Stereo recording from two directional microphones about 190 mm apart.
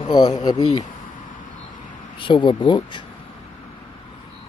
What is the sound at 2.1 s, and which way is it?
Speech, 25° left (ahead or behind).